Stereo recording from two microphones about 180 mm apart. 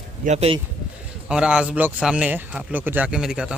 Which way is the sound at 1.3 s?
5° right (ahead or behind).